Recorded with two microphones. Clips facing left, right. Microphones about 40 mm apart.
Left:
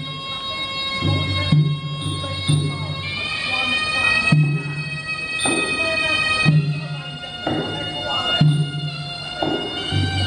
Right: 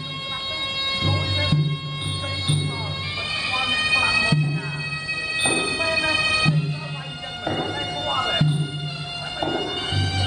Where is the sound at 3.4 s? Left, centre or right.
Left.